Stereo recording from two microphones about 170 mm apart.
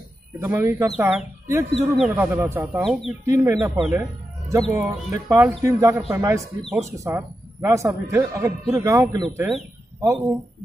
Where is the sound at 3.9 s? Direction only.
15° right (ahead or behind).